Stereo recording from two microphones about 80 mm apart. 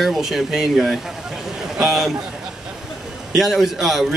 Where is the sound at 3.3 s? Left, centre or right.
Centre.